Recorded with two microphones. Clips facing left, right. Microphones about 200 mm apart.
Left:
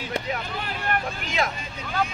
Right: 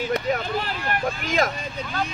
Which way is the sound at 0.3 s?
45° right (ahead or behind).